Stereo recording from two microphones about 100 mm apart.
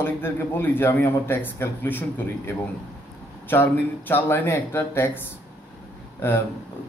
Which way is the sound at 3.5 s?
20° left (ahead or behind).